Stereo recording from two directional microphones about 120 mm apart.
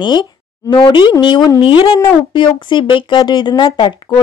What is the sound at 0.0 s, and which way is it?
A woman's voice, 40° left (ahead or behind).